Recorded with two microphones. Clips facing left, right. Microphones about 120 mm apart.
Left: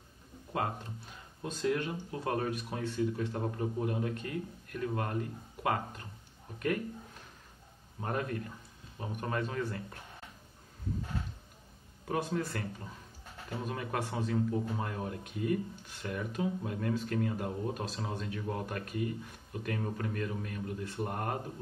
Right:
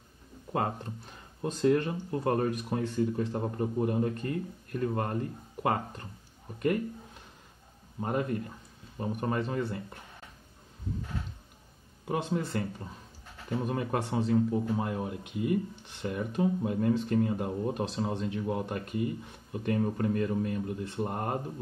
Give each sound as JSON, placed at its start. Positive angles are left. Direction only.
{"t": 1.4, "sound": "speech", "side_deg": -40}
{"t": 8.0, "sound": "speech", "side_deg": -20}
{"t": 12.1, "sound": "speech", "side_deg": -20}
{"t": 13.7, "sound": "speech", "side_deg": -25}